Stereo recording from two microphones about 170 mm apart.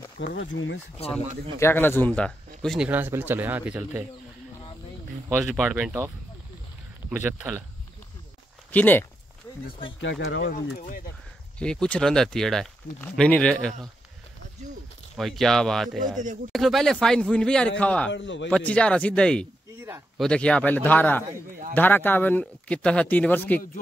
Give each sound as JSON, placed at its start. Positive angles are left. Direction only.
{"t": 0.2, "sound": "speech", "side_deg": 90}
{"t": 1.6, "sound": "speech", "side_deg": 15}
{"t": 2.9, "sound": "speech", "side_deg": -10}
{"t": 5.4, "sound": "speech", "side_deg": -5}
{"t": 7.1, "sound": "speech", "side_deg": -10}
{"t": 8.7, "sound": "speech", "side_deg": 10}
{"t": 9.9, "sound": "speech", "side_deg": 90}
{"t": 11.5, "sound": "speech", "side_deg": 5}
{"t": 15.1, "sound": "speech", "side_deg": 0}
{"t": 18.1, "sound": "speech", "side_deg": 90}
{"t": 18.5, "sound": "speech", "side_deg": 5}